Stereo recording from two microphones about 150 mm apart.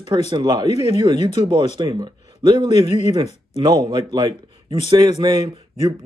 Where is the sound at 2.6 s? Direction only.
45° left (ahead or behind).